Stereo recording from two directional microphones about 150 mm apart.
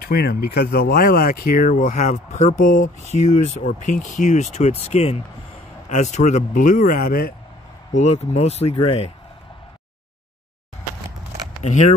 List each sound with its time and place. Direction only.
0.0 s speech: 90° left; by 7.3 s 75° left (ahead or behind)
7.9 s speech: 50° left (ahead or behind)
11.6 s speech: 50° left (ahead or behind)